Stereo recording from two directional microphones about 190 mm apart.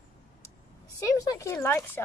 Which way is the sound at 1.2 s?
15° left (ahead or behind).